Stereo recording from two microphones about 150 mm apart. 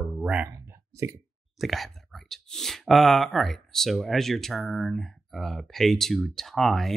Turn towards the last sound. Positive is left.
turn(degrees=0)  # may be behind; listen again after turning